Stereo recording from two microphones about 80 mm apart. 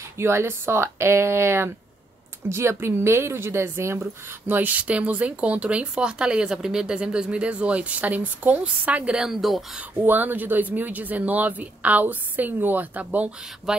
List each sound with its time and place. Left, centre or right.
0.2 s speech: right; by 9.6 s centre
9.8 s speech: right
13.7 s speech: centre